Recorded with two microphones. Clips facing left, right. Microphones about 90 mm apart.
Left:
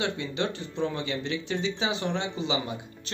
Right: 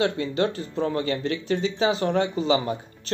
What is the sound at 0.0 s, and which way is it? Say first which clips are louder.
Speech: right 6 dB; 40° right (ahead or behind).